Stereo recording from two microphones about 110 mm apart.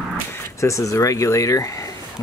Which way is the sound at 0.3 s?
25° left (ahead or behind).